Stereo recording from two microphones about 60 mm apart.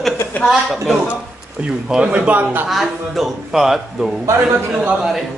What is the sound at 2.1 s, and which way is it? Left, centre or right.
Speech, right.